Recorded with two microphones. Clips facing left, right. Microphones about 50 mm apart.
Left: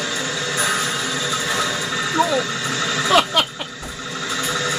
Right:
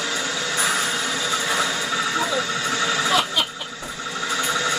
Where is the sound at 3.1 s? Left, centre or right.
Left.